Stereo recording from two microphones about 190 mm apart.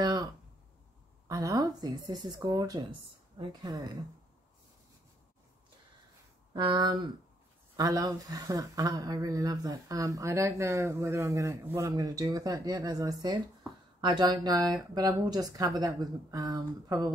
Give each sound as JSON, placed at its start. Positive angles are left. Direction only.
{"t": 0.0, "sound": "a sound", "side_deg": -20}
{"t": 1.2, "sound": "speech", "side_deg": -15}
{"t": 6.5, "sound": "speech", "side_deg": -25}